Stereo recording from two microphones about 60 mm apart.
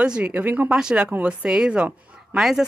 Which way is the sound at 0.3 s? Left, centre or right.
Right.